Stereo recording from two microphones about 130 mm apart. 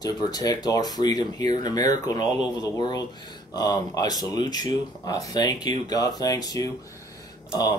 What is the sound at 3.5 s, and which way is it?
Speech, 30° left (ahead or behind).